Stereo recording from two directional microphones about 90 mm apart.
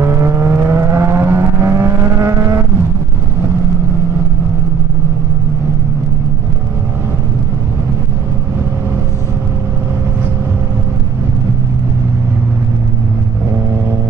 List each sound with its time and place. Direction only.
0.0 s vehicle: 30° right (ahead or behind)